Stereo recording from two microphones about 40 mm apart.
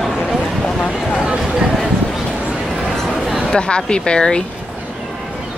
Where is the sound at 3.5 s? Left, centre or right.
Left.